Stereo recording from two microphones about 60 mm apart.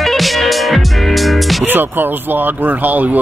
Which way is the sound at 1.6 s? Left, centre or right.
Right.